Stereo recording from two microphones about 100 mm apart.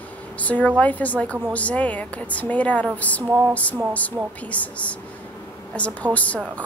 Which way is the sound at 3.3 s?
25° right (ahead or behind).